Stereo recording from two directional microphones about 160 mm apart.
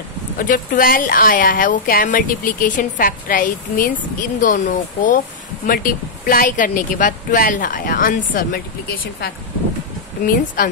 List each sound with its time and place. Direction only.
0.4 s speech: 60° left (ahead or behind)